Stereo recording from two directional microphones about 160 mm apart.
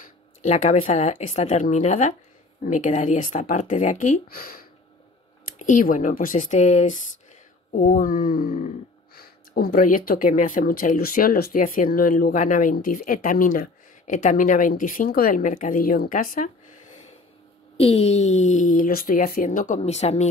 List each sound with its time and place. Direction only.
0.0 s speech: 50° left (ahead or behind); by 4.6 s 70° left (ahead or behind)
5.4 s speech: 55° left (ahead or behind)
17.7 s speech: 40° left (ahead or behind)